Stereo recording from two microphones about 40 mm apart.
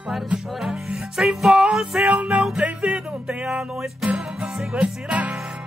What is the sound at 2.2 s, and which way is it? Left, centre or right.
Music, right.